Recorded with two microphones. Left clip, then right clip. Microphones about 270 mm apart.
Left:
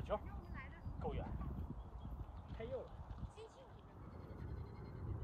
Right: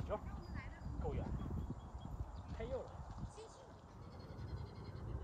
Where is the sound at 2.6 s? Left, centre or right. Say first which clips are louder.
Right 2 dB; centre.